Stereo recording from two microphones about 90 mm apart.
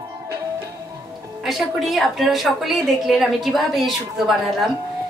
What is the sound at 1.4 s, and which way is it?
A woman's voice, centre (ahead or behind).